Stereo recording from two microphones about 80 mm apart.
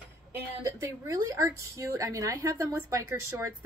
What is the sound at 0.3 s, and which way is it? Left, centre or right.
Speech, right.